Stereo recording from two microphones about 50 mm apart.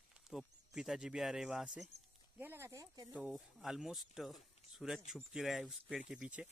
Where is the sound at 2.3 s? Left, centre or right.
Right.